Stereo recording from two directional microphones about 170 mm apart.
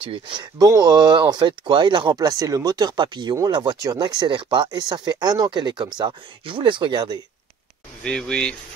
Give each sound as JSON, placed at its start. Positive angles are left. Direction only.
{"t": 0.0, "sound": "speech", "side_deg": -30}
{"t": 8.0, "sound": "speech", "side_deg": 5}